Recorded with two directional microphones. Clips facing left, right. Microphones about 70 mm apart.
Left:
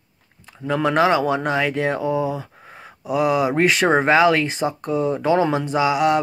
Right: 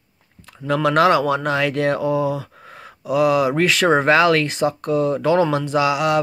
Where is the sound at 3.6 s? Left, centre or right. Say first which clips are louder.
Even; left.